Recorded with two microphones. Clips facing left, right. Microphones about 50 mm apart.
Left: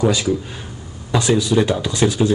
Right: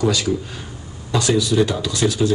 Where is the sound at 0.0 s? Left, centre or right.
Left.